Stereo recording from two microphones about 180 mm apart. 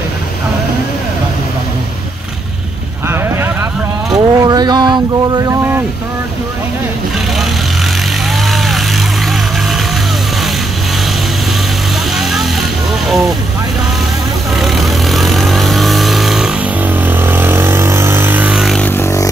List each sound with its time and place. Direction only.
4.1 s speech: 20° right (ahead or behind)
8.5 s vehicle: centre (ahead or behind)
12.2 s vehicle: centre (ahead or behind)
14.6 s vehicle: centre (ahead or behind)